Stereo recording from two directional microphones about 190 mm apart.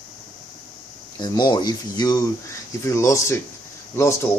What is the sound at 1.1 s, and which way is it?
Speech, 20° left (ahead or behind).